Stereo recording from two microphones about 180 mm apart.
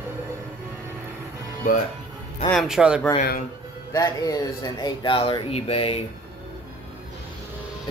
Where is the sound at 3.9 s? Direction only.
20° left (ahead or behind).